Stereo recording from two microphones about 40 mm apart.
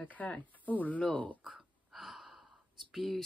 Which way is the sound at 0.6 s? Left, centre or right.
Left.